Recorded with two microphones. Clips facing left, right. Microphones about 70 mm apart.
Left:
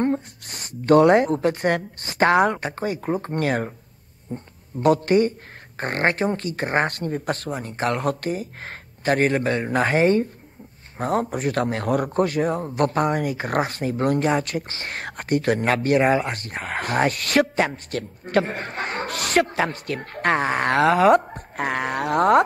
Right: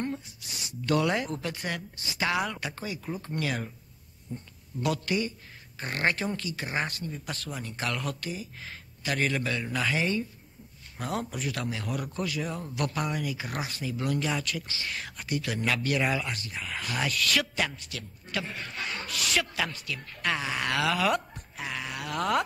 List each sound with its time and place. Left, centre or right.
0.0 s a man's voice: left